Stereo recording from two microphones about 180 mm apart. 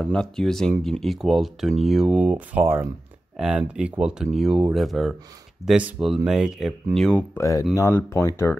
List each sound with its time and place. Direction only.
0.0 s speech: 5° left (ahead or behind)
7.3 s speech: 15° left (ahead or behind)